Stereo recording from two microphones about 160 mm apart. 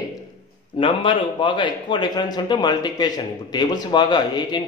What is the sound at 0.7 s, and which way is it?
A man's voice, 30° left (ahead or behind).